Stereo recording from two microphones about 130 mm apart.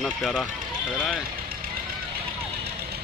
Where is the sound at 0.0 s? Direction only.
5° left (ahead or behind).